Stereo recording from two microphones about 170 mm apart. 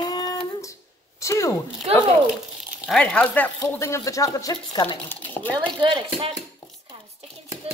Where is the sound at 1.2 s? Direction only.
20° left (ahead or behind).